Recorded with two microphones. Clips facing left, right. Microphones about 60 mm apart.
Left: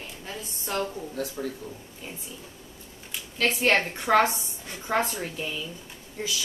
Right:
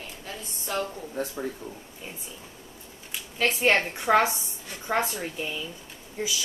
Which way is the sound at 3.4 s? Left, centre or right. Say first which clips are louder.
Even; centre.